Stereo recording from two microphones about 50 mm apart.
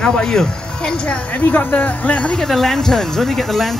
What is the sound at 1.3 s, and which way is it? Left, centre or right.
Speech, left.